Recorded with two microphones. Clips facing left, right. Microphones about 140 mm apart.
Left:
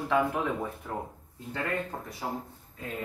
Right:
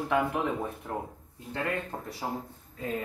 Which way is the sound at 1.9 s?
20° right (ahead or behind).